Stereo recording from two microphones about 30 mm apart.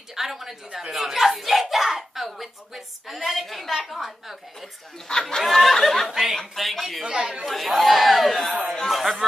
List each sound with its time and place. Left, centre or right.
0.1 s a woman's voice: centre
5.0 s speech: left
5.6 s speech: centre
7.1 s speech: right
7.4 s speech: centre